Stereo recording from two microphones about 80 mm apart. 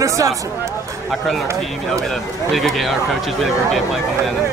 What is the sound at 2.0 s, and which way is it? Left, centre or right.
Speech, centre.